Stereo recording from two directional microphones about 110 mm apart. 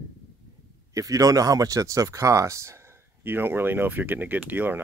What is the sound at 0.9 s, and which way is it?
Speech, 30° right (ahead or behind).